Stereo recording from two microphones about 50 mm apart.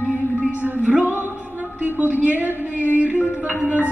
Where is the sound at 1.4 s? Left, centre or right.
Right.